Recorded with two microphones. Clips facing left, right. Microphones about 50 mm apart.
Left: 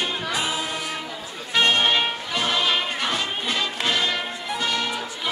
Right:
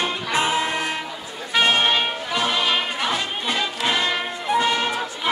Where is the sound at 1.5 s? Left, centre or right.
Centre.